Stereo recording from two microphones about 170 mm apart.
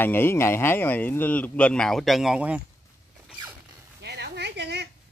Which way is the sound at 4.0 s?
80° right.